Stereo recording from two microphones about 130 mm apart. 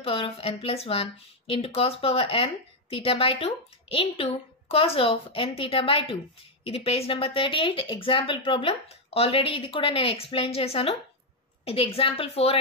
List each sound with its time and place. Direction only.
0.0 s speech: 45° left (ahead or behind)